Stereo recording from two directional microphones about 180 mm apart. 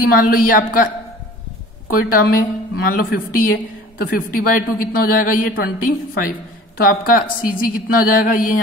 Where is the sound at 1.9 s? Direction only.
55° left (ahead or behind).